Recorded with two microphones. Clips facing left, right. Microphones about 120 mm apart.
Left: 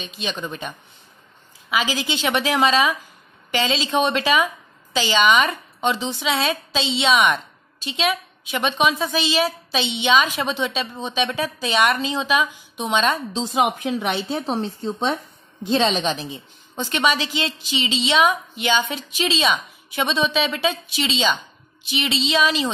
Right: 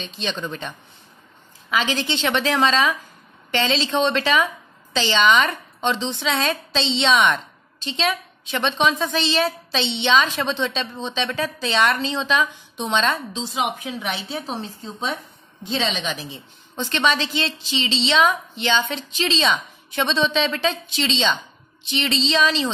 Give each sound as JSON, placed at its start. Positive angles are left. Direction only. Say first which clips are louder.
{"t": 0.0, "sound": "a woman's voice", "louder": "right 1 dB", "side_deg": 10}
{"t": 13.3, "sound": "a woman's voice", "louder": "left 4 dB", "side_deg": 45}
{"t": 16.3, "sound": "a woman's voice", "louder": "left 3 dB", "side_deg": 15}